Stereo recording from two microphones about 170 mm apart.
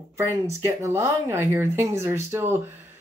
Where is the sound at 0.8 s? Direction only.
15° right (ahead or behind).